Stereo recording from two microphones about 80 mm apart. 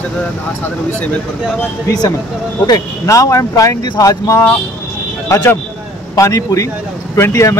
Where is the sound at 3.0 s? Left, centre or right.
Left.